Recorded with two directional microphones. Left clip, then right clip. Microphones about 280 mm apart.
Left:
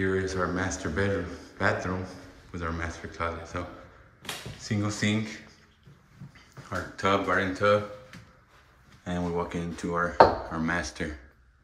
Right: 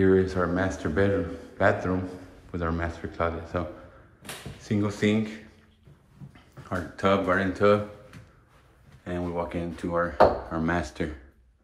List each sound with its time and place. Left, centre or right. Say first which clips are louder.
0.0 s speech: right 5 dB; centre
4.6 s speech: right 4 dB; centre
6.7 s speech: right 2 dB; centre
9.0 s speech: even; centre